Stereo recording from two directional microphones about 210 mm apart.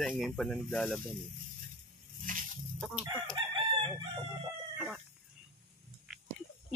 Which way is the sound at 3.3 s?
20° right (ahead or behind).